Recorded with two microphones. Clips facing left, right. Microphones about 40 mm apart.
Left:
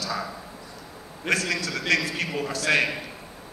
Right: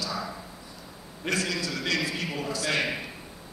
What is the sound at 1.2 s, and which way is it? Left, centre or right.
A man's voice, left.